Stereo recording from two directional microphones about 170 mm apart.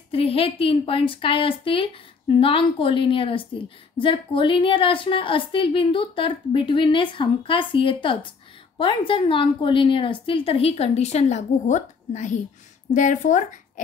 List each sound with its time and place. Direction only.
0.1 s a woman's voice: 35° left (ahead or behind)